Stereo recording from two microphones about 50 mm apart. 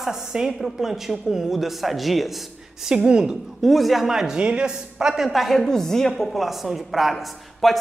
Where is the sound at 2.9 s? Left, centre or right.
Centre.